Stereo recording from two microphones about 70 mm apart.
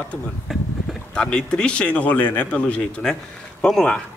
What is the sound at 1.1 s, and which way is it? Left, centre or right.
Speech, centre.